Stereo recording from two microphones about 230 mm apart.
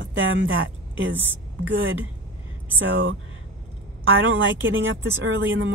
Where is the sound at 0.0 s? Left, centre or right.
Right.